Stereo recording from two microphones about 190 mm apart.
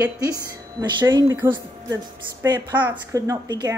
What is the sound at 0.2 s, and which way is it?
Speech, 20° right (ahead or behind).